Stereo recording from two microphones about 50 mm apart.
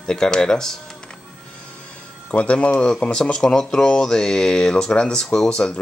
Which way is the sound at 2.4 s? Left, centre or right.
Left.